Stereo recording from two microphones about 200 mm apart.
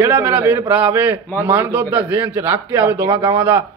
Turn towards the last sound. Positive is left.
turn(degrees=-10)  # may be behind; listen again after turning